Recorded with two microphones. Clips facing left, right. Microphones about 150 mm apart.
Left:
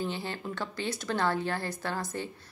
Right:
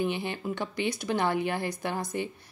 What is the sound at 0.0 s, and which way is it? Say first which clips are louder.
Speech: right 4 dB; 15° right (ahead or behind).